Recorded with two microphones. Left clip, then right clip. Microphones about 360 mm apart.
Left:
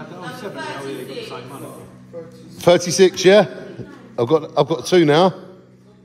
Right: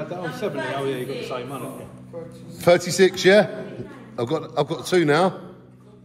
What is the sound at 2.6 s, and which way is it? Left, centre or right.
A man's voice, centre.